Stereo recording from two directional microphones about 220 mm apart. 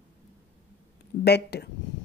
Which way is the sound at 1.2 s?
50° left (ahead or behind).